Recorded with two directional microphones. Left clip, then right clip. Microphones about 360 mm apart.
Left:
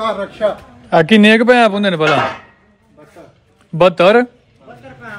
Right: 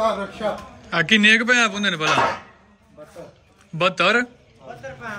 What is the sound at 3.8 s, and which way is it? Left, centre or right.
Speech, centre.